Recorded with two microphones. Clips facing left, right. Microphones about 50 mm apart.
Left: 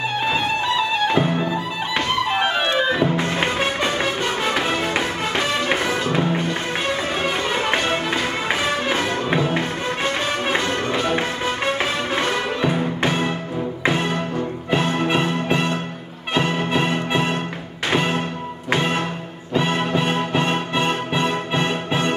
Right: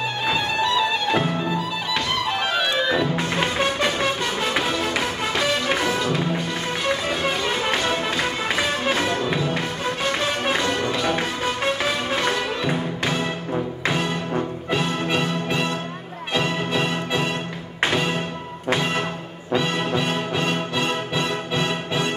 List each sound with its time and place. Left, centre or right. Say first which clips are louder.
0.3 s music: right 1 dB; left
7.7 s music: left 2 dB; left
14.7 s music: left 4 dB; left